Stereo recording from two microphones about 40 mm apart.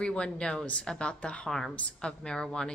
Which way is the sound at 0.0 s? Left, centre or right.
Left.